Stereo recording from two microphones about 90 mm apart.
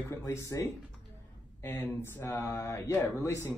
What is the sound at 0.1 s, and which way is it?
Speech, 35° left (ahead or behind).